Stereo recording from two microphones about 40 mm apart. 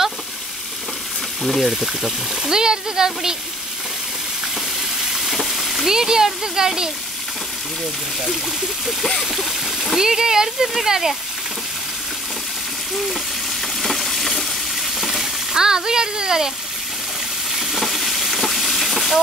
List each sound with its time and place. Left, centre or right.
1.4 s speech: centre
1.7 s speech: centre
5.1 s frying: centre
5.9 s speech: centre
8.3 s speech: centre
9.2 s stream: centre
9.9 s speech: centre
13.7 s a sound: centre
15.5 s speech: centre
17.5 s frying: centre
17.7 s stir: centre